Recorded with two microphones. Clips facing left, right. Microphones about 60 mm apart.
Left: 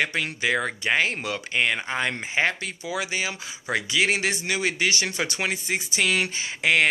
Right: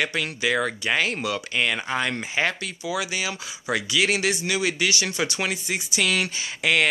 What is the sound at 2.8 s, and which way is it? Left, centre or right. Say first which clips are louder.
Speech: right 2 dB; left.